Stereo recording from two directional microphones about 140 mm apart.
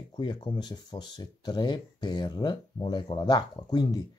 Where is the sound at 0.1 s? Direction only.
35° left (ahead or behind).